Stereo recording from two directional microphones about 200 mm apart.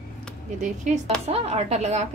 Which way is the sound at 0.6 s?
40° right (ahead or behind).